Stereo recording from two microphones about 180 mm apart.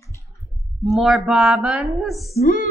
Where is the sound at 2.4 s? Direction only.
50° left (ahead or behind).